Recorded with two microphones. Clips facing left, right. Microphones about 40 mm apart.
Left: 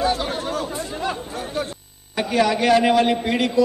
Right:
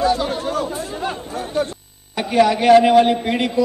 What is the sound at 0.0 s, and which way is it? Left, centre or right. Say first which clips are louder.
Speech: right 3 dB; left.